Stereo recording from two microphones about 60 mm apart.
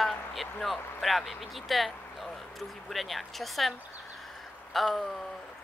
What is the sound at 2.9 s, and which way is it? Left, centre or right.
Speech, centre.